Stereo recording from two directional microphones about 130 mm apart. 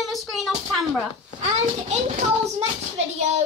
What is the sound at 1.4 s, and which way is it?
A child's voice, 55° right (ahead or behind).